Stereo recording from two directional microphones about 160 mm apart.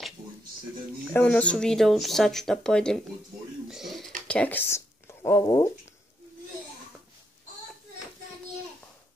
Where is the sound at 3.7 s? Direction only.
Centre (ahead or behind).